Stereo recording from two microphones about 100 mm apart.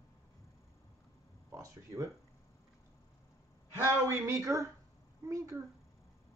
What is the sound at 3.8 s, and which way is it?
Speech, 25° right (ahead or behind).